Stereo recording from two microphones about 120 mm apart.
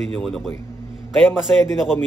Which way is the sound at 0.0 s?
5° left (ahead or behind).